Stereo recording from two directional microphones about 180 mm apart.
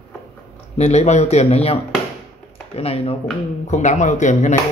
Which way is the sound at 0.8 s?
40° left (ahead or behind).